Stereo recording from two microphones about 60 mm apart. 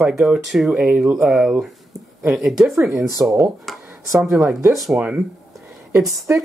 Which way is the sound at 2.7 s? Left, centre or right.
Right.